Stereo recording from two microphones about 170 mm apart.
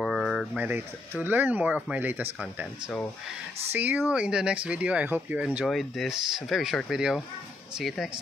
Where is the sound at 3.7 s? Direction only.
10° right (ahead or behind).